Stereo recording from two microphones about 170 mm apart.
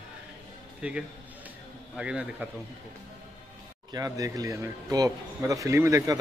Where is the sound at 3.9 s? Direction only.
20° right (ahead or behind).